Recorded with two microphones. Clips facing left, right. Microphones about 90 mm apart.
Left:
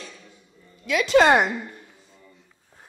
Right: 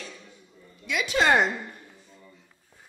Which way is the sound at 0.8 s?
90° left.